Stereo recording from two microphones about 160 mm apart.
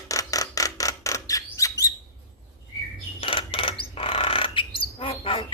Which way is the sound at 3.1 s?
35° left (ahead or behind).